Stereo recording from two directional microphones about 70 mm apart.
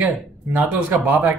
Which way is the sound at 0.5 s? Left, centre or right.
Right.